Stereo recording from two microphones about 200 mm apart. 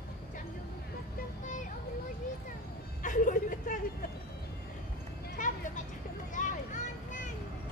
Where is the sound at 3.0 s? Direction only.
40° left (ahead or behind).